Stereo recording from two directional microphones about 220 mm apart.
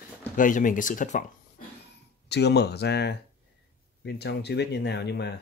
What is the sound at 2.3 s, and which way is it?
Speech, 50° left (ahead or behind).